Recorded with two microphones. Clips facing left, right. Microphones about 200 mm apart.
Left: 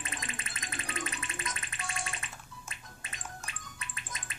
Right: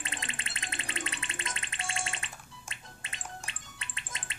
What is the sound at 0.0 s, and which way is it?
Music, 30° right (ahead or behind).